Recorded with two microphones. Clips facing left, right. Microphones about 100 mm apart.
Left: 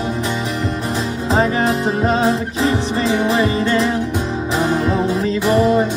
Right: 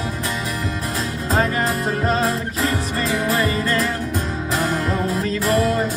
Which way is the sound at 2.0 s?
20° left (ahead or behind).